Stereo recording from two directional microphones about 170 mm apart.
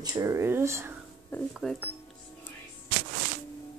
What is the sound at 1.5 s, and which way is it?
Speech, centre (ahead or behind).